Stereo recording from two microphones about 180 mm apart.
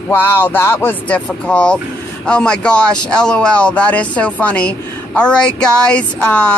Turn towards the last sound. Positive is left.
turn(degrees=5)  # may be behind; listen again after turning